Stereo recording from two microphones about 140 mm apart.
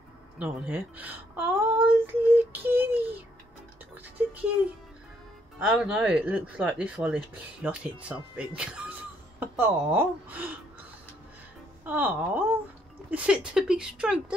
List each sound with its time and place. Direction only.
0.4 s speech: 10° right (ahead or behind)
3.9 s music: 10° right (ahead or behind)
5.8 s speech: 10° right (ahead or behind)
11.8 s speech: 10° right (ahead or behind)